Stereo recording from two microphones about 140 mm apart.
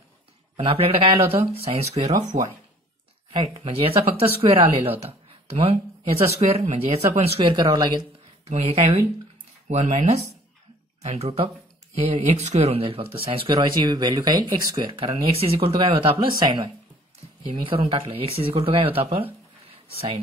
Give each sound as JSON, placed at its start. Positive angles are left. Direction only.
{"t": 0.6, "sound": "speech", "side_deg": -40}
{"t": 3.4, "sound": "speech", "side_deg": -45}
{"t": 7.5, "sound": "speech", "side_deg": -30}
{"t": 8.5, "sound": "speech", "side_deg": -45}
{"t": 13.6, "sound": "speech", "side_deg": -30}
{"t": 17.6, "sound": "speech", "side_deg": -40}